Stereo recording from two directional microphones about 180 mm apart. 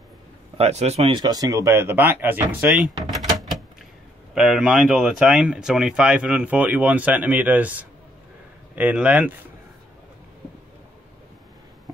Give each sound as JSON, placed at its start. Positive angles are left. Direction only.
{"t": 0.6, "sound": "speech", "side_deg": -40}
{"t": 1.2, "sound": "speech", "side_deg": -20}
{"t": 3.3, "sound": "door", "side_deg": 0}
{"t": 4.3, "sound": "speech", "side_deg": 0}